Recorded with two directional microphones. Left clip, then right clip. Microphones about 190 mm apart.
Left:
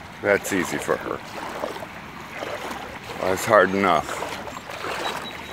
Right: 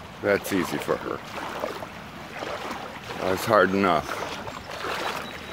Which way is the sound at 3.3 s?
15° right (ahead or behind).